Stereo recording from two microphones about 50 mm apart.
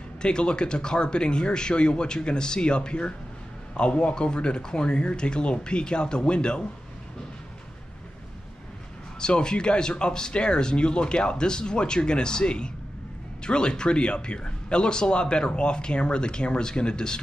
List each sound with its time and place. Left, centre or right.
0.2 s speech: centre
9.2 s speech: centre